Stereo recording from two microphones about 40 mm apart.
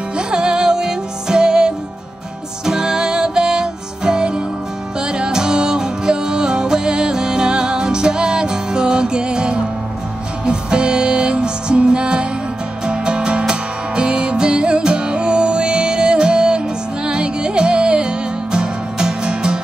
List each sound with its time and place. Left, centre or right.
0.3 s music: right